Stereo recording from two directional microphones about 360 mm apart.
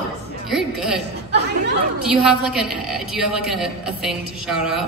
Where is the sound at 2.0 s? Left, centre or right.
Centre.